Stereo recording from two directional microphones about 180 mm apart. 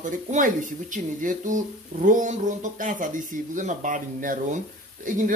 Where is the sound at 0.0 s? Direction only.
45° right (ahead or behind).